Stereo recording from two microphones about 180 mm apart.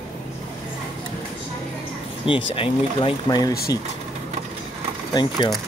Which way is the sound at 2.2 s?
30° left (ahead or behind).